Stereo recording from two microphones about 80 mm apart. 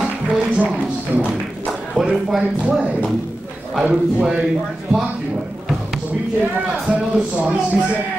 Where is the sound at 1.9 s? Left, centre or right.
Centre.